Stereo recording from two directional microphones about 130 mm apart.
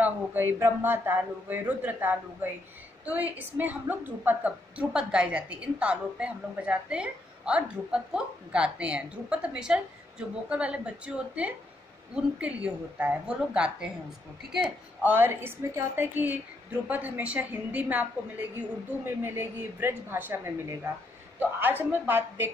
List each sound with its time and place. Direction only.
0.0 s a woman's voice: 15° right (ahead or behind)
15.0 s a woman's voice: 15° right (ahead or behind)
19.0 s a woman's voice: 15° right (ahead or behind)